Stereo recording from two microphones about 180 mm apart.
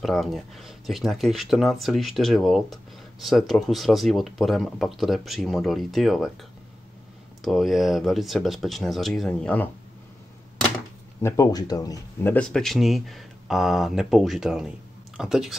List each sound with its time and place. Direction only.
0.0 s speech: centre (ahead or behind)
7.4 s speech: centre (ahead or behind)
11.2 s speech: 20° left (ahead or behind); by 15.5 s 5° right (ahead or behind)